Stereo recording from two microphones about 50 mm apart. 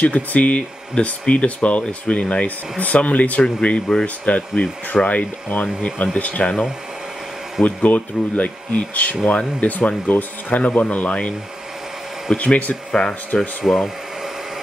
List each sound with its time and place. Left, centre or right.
0.0 s speech: left
7.6 s speech: left
12.4 s speech: left
12.9 s speech: centre
13.6 s speech: centre